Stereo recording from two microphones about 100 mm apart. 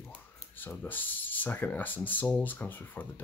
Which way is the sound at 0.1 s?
20° left (ahead or behind).